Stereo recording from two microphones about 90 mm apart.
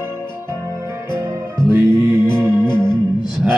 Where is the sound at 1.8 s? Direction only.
60° left (ahead or behind).